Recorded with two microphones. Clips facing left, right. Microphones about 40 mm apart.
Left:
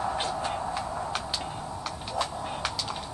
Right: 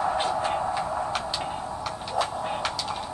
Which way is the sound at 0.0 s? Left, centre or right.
Centre.